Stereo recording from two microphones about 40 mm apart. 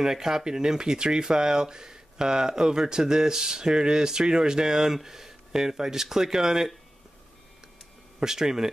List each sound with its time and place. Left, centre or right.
0.0 s speech: centre
8.2 s speech: centre